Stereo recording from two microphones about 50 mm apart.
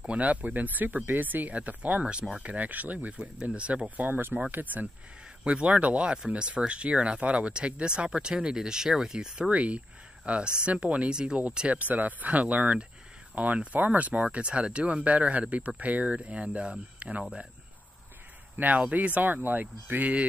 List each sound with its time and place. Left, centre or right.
0.0 s speech: right
5.4 s speech: right
6.0 s speech: centre
9.5 s speech: right
11.7 s speech: right
18.8 s speech: right